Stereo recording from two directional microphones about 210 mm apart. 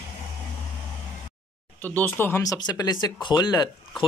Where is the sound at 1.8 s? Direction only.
10° left (ahead or behind).